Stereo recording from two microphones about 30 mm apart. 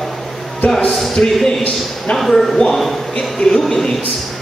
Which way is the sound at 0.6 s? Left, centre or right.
Left.